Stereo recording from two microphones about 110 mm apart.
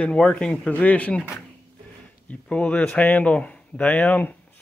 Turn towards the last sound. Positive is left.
turn(degrees=15)  # may be behind; listen again after turning